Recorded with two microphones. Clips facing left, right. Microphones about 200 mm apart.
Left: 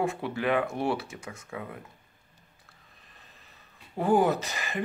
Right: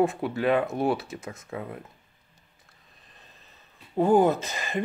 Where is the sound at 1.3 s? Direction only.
30° right (ahead or behind).